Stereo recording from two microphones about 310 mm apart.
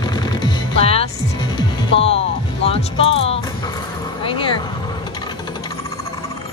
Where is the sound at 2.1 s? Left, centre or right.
Centre.